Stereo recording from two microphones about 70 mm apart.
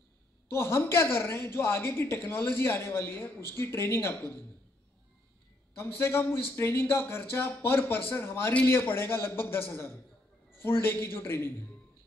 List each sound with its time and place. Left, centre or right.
0.5 s speech: left
5.8 s speech: left